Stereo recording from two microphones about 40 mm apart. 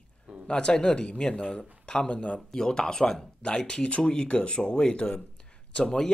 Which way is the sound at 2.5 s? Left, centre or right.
Centre.